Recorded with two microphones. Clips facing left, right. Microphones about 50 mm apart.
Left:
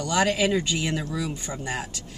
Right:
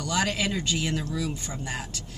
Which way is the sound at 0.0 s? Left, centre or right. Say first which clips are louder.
Left 4 dB; centre.